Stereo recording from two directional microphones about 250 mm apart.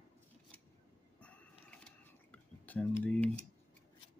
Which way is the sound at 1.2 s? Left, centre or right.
Centre.